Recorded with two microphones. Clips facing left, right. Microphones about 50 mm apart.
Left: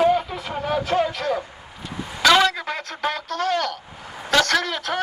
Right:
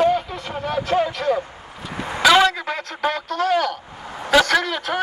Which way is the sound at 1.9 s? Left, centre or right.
Right.